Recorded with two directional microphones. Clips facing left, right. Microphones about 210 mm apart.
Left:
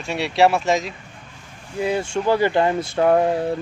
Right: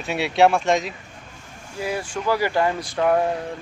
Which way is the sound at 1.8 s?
25° left (ahead or behind).